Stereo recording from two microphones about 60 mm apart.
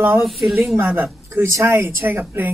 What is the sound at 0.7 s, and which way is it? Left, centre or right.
Speech, right.